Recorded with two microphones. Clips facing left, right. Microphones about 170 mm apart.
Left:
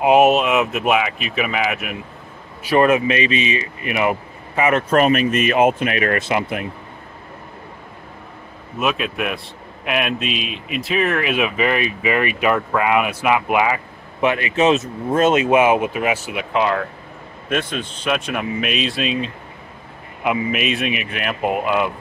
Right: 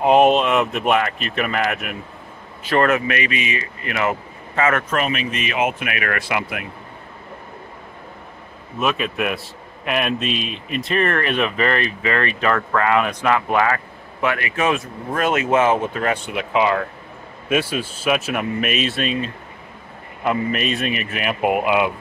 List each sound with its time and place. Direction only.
0.0 s a man's voice: 5° left (ahead or behind)
2.6 s speech: 15° left (ahead or behind)
4.8 s speech: 40° left (ahead or behind); by 6.6 s 25° left (ahead or behind)
8.7 s a man's voice: centre (ahead or behind)